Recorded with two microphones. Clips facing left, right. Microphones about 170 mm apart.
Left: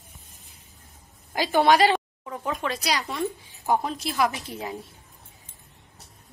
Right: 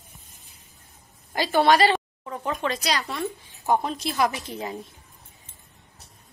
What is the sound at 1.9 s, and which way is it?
A woman's voice, 5° left (ahead or behind).